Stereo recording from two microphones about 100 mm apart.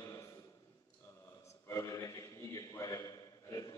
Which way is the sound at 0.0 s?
30° left (ahead or behind).